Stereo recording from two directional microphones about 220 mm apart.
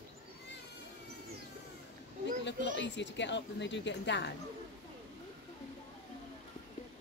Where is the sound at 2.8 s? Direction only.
55° left (ahead or behind).